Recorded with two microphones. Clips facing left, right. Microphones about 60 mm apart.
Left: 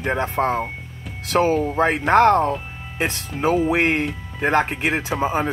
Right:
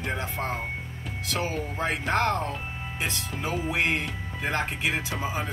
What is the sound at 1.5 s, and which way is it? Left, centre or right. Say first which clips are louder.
Speech: left 12 dB; left.